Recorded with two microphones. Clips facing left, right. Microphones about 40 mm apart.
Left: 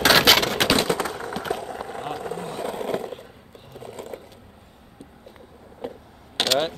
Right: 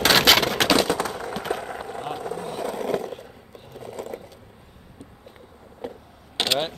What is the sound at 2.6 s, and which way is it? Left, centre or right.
Skateboard, left.